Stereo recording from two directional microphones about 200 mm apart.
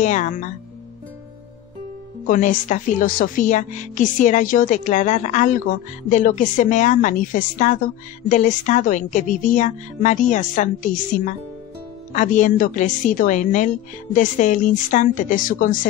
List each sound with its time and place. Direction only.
0.0 s speech: 40° left (ahead or behind)
2.2 s speech: 40° left (ahead or behind)